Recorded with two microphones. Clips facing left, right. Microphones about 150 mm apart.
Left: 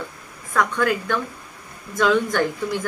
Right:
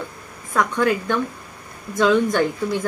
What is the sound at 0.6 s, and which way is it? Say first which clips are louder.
Speech: right 1 dB; 25° right (ahead or behind).